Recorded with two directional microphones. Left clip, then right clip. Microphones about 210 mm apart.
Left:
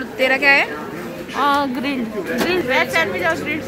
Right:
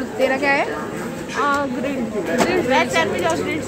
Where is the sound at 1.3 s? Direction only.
50° left (ahead or behind).